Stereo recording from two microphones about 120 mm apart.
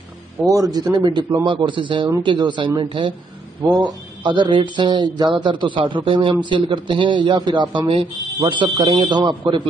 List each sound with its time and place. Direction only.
0.5 s speech: 30° right (ahead or behind)